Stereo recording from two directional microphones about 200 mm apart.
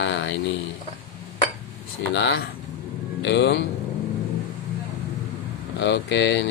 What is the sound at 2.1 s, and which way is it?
Speech, 60° left (ahead or behind).